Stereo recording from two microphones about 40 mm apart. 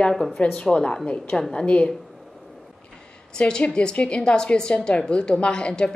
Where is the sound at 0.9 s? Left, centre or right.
Centre.